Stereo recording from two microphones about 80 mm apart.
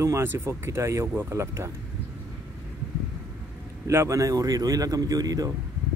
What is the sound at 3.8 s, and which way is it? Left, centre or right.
Speech, right.